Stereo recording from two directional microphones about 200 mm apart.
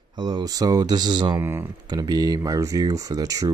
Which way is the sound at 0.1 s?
20° right (ahead or behind).